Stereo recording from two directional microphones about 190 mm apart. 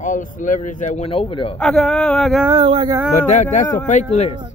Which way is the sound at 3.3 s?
40° left (ahead or behind).